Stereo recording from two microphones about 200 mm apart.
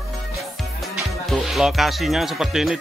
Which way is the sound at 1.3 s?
Centre (ahead or behind).